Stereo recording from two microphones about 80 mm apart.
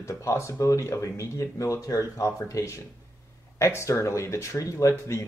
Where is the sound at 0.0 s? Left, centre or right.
Left.